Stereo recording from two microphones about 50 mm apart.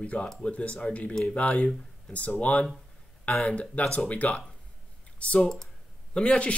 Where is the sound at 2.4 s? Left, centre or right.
Left.